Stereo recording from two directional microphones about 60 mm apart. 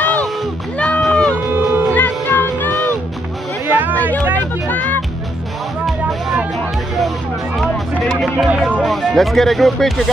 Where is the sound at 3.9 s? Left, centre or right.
Left.